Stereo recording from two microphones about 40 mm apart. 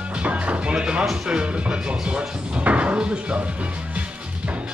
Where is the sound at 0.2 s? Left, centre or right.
Right.